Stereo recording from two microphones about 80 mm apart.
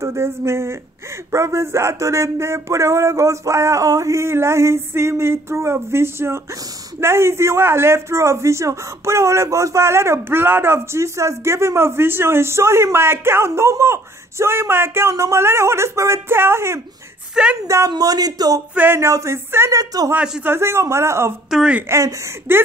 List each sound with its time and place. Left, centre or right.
0.0 s speech: right
17.4 s a woman's voice: centre
17.8 s speech: right
18.9 s speech: right
19.8 s speech: right
20.4 s speech: right
21.5 s speech: centre
21.8 s speech: right